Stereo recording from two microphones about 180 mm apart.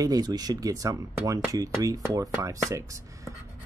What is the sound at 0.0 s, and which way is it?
Speech, 20° right (ahead or behind).